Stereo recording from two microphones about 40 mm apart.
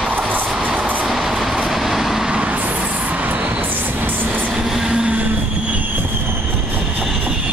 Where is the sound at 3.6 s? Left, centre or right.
Right.